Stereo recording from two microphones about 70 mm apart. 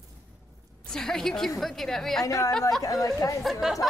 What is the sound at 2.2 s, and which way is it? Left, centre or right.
A woman's voice, left.